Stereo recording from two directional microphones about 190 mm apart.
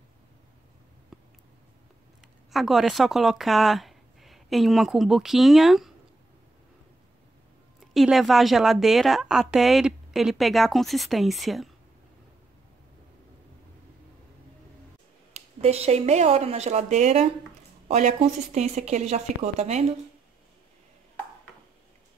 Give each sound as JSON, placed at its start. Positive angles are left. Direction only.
{"t": 1.1, "sound": "a sound", "side_deg": 0}
{"t": 2.5, "sound": "speech", "side_deg": 0}
{"t": 7.8, "sound": "a woman's voice", "side_deg": 0}
{"t": 15.3, "sound": "speech", "side_deg": -35}